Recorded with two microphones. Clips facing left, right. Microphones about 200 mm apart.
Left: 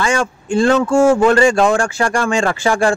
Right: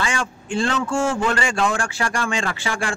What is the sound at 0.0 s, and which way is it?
Speech, 45° left (ahead or behind).